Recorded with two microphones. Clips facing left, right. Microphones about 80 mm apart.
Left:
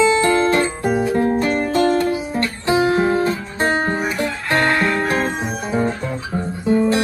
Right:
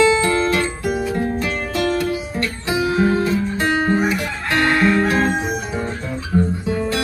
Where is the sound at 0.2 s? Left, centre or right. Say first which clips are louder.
Left 2 dB; left.